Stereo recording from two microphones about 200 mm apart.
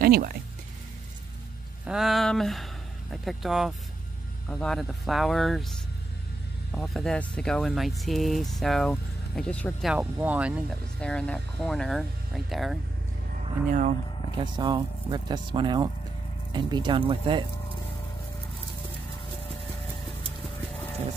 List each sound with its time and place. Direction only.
0.0 s speech: 45° right (ahead or behind)
1.9 s speech: centre (ahead or behind)
11.0 s speech: 5° left (ahead or behind)
13.7 s speech: 45° right (ahead or behind)
14.3 s speech: 20° right (ahead or behind)